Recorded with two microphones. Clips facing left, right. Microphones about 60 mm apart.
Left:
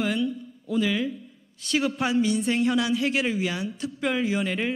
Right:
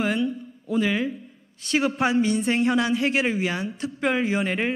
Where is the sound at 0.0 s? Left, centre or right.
Right.